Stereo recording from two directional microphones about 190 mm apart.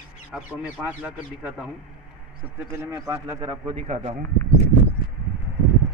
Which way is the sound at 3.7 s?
35° right (ahead or behind).